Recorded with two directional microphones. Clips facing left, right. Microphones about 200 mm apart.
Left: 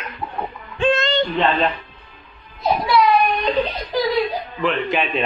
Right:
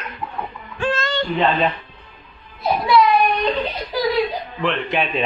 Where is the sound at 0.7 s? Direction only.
20° left (ahead or behind).